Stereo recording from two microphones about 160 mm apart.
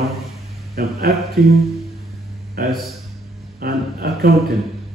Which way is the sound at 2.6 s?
75° right (ahead or behind).